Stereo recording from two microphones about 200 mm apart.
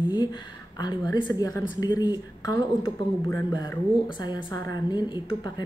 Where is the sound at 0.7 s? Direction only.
20° left (ahead or behind).